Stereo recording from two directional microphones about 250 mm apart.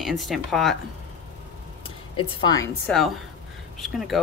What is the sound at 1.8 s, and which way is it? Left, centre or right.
Speech, centre.